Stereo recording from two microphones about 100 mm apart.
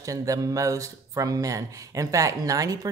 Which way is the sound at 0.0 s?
35° right (ahead or behind).